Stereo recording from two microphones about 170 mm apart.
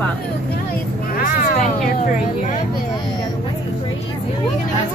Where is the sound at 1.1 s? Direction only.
55° left (ahead or behind).